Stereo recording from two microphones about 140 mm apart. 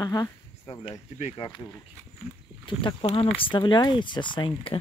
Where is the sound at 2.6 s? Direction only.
35° left (ahead or behind).